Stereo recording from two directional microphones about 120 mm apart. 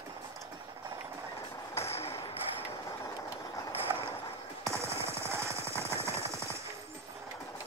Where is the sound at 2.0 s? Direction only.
55° left (ahead or behind).